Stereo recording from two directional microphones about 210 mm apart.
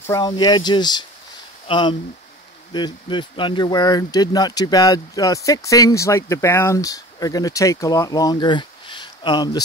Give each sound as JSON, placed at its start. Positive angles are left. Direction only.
{"t": 0.0, "sound": "speech", "side_deg": 15}